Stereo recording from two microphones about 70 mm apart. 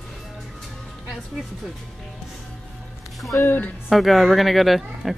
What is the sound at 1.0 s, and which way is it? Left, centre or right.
Speech, centre.